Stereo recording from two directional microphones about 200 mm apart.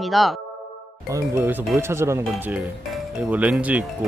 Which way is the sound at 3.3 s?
5° right (ahead or behind).